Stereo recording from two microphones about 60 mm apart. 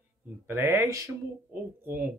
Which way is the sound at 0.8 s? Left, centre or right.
Right.